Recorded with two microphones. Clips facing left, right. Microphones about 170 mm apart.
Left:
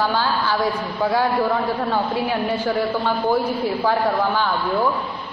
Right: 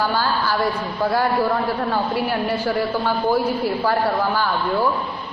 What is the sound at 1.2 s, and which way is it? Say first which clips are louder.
A man's voice: even; centre (ahead or behind).